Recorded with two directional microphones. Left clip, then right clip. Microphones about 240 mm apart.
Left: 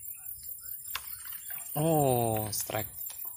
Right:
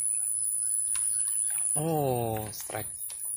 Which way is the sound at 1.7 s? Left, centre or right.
Left.